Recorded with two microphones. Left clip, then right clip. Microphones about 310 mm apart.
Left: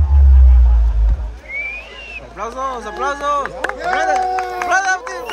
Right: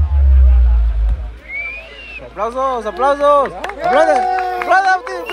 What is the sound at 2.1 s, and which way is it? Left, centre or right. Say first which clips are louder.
Speech: right 6 dB; centre.